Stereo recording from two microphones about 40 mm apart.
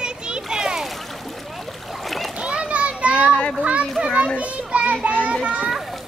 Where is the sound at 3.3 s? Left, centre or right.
Left.